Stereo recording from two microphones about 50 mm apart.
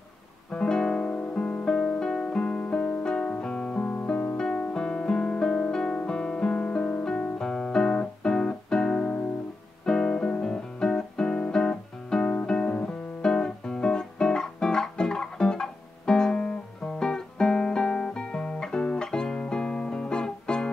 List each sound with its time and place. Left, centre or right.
0.5 s guitar: centre
1.2 s music: left
3.8 s music: left
9.8 s guitar: centre
10.5 s music: centre